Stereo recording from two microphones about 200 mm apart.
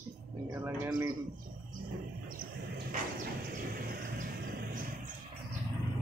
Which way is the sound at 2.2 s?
45° right (ahead or behind).